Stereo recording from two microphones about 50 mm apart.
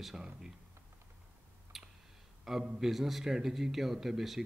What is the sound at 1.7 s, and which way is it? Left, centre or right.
Clicking, centre.